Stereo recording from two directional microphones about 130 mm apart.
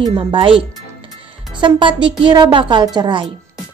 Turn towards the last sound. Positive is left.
turn(degrees=-35)  # may be behind; listen again after turning